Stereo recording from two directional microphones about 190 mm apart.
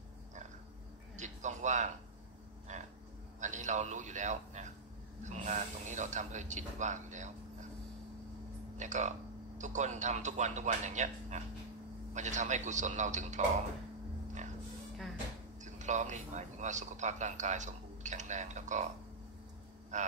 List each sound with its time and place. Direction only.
1.1 s a sound: 40° right (ahead or behind)
3.3 s a man's voice: 40° right (ahead or behind)
8.7 s a man's voice: 40° right (ahead or behind)
15.6 s a man's voice: 40° right (ahead or behind)
19.9 s a man's voice: 40° right (ahead or behind)